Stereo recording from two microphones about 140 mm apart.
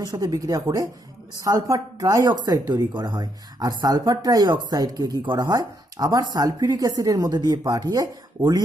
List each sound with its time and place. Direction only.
0.0 s speech: 25° right (ahead or behind)